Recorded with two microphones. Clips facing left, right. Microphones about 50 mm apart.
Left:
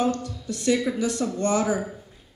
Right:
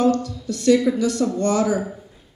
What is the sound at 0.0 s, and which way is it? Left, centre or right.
A man's voice, centre.